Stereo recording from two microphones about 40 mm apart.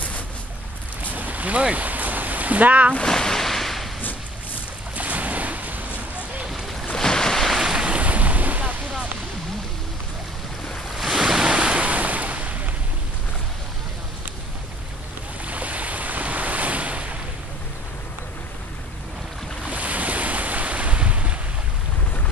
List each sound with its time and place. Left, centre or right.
1.1 s a sound: right
3.0 s a sound: centre
4.9 s boat: right
7.0 s waves: centre
7.7 s waves: right
11.0 s waves: centre; by 11.9 s right
11.9 s waves: right
15.4 s waves: right
19.7 s waves: right